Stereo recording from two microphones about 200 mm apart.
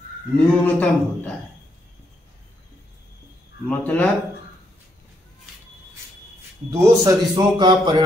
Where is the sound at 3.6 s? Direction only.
10° left (ahead or behind).